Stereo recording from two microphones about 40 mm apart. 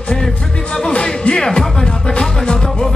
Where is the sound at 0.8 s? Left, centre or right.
Left.